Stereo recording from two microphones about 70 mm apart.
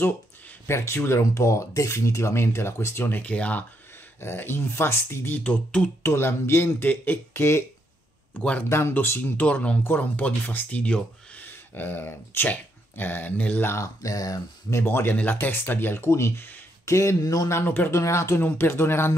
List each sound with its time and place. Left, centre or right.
0.7 s speech: left
1.2 s speech: left; by 3.6 s centre
4.2 s speech: left
5.4 s speech: centre
6.0 s speech: left
8.4 s speech: centre
8.6 s speech: left
9.2 s speech: left
14.0 s speech: left
14.8 s speech: left
16.8 s speech: left
17.5 s speech: left
17.9 s speech: left